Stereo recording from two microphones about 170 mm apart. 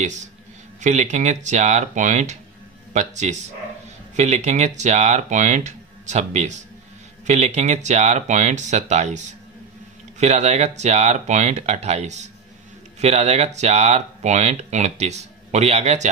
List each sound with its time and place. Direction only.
0.7 s speech: 45° right (ahead or behind)